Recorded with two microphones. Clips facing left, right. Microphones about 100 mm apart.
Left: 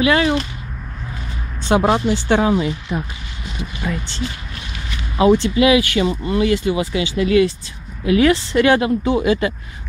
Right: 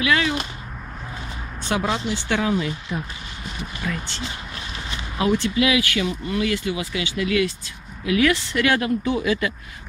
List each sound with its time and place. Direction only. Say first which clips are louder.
0.0 s speech: left 6 dB; 35° left (ahead or behind)
1.6 s speech: left 8 dB; 35° left (ahead or behind)
2.2 s speech: left 4 dB; 30° left (ahead or behind)
5.1 s speech: left 7 dB; 25° left (ahead or behind)